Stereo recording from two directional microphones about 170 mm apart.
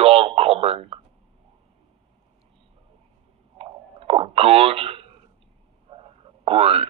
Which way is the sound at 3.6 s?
35° right (ahead or behind).